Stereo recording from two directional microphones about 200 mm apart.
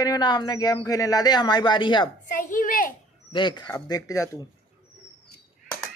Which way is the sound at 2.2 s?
40° left (ahead or behind).